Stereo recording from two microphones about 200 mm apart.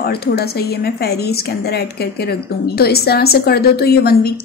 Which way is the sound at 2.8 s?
50° left (ahead or behind).